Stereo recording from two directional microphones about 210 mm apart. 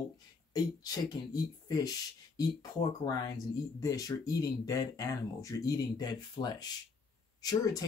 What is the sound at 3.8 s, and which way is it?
Speech, 15° left (ahead or behind).